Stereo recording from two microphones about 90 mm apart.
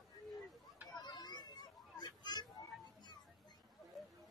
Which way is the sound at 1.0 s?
50° left (ahead or behind).